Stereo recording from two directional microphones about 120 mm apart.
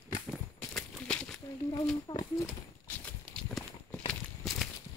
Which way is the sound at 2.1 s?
35° left (ahead or behind).